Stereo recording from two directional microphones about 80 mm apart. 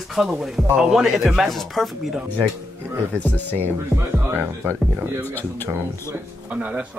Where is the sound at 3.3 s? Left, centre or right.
Left.